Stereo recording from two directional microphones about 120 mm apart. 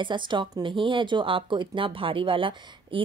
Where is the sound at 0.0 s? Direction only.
40° right (ahead or behind).